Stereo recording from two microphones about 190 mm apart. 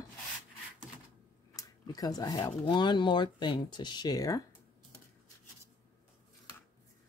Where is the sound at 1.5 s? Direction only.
20° left (ahead or behind).